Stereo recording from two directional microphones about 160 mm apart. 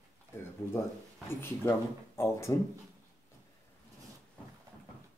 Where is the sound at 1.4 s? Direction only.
15° left (ahead or behind).